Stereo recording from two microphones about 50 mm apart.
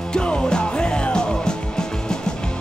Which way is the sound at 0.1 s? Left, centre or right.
Centre.